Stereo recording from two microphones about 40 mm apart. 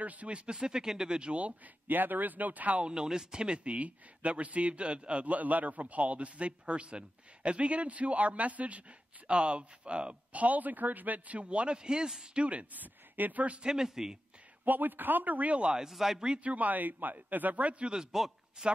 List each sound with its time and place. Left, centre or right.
0.0 s speech: right
0.5 s speech: right
1.9 s a man's voice: right
2.8 s speech: centre
10.4 s a man's voice: right
11.3 s speech: right
12.4 s speech: right
12.8 s speech: right
13.6 s a man's voice: centre
14.6 s a man's voice: right
15.6 s a man's voice: centre
15.9 s a man's voice: centre
16.4 s a man's voice: right
18.1 s a man's voice: centre